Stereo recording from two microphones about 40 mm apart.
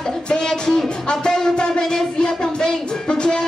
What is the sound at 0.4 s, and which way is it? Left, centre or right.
Music, centre.